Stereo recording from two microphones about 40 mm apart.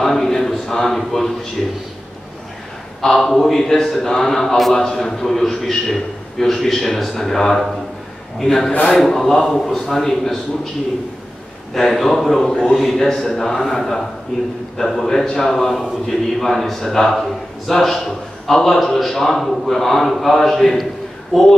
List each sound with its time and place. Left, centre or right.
0.0 s a sound: centre
3.0 s a man's voice: centre
11.7 s a man's voice: centre